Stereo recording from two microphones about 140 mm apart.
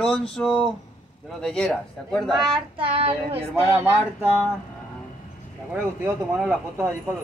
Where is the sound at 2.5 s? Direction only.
40° right (ahead or behind).